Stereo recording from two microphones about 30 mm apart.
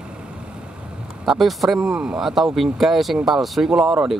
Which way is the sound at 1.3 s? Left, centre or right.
Centre.